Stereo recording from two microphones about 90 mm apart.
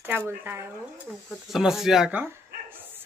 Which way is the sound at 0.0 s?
20° right (ahead or behind).